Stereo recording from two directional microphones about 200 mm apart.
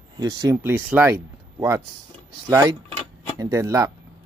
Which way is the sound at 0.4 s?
15° right (ahead or behind).